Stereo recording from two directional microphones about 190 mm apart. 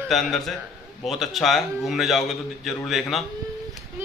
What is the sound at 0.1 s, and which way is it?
A man's voice, centre (ahead or behind).